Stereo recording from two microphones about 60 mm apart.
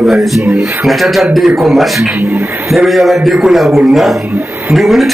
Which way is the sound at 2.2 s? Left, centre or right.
Right.